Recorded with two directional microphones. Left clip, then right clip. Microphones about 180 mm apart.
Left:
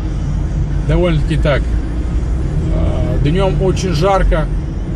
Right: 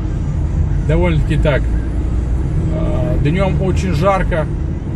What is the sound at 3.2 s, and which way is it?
Speech, 15° right (ahead or behind).